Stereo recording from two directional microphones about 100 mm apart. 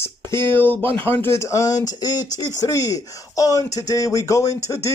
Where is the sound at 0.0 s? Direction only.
25° left (ahead or behind).